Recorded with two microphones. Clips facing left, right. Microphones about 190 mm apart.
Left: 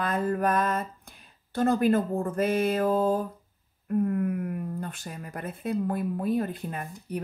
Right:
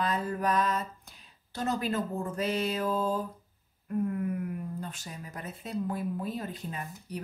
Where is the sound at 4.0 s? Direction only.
55° left (ahead or behind).